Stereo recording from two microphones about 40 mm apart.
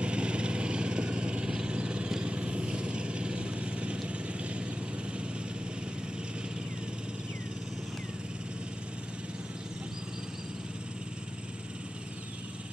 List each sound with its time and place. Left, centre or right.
0.0 s vehicle: right